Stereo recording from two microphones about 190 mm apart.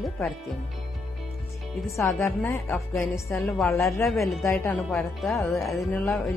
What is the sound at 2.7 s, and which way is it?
Speech, 5° left (ahead or behind).